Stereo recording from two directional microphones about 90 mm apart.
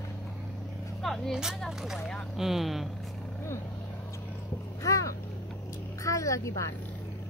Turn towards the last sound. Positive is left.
turn(degrees=35)  # may be behind; listen again after turning